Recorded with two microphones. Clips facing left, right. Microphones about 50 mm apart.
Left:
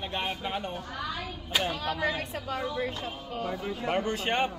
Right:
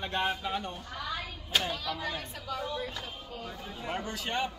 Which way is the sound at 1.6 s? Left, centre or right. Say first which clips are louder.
Left 5 dB; left.